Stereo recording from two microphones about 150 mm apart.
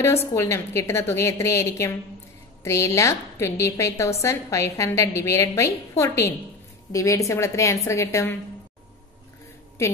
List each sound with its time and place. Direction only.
0.3 s a woman's voice: 20° left (ahead or behind)